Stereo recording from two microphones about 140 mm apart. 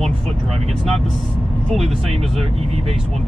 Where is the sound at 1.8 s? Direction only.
45° right (ahead or behind).